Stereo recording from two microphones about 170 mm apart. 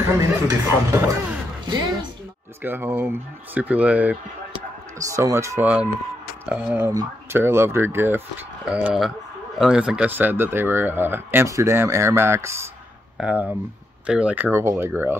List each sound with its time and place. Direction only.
0.0 s speech: 15° right (ahead or behind)